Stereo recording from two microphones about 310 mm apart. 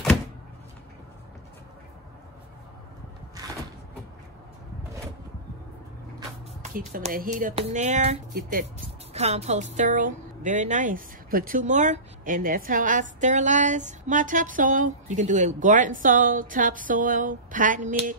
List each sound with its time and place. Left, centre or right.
6.9 s a woman's voice: right